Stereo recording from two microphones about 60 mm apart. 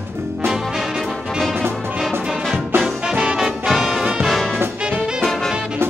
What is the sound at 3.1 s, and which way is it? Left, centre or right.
Brass instrument, centre.